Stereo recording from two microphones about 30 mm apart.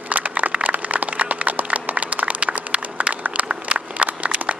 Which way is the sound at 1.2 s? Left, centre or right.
Right.